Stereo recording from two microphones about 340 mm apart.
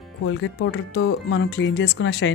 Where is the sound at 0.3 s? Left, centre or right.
Left.